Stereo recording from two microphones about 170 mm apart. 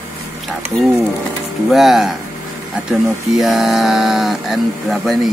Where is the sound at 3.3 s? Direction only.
Centre (ahead or behind).